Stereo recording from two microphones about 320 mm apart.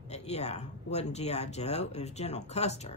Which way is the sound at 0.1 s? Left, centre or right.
Left.